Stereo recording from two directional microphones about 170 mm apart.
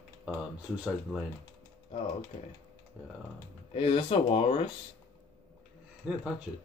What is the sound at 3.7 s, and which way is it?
Speech, 35° left (ahead or behind).